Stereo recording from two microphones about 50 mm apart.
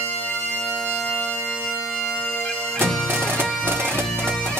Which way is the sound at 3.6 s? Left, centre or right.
Right.